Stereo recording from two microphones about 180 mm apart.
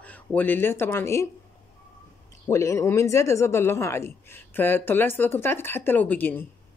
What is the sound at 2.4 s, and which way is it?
A woman's voice, 15° left (ahead or behind).